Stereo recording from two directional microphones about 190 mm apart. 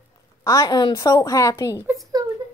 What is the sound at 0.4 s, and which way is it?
Speech, 15° left (ahead or behind).